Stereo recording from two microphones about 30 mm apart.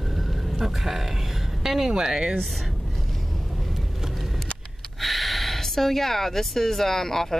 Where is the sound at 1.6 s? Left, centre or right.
Centre.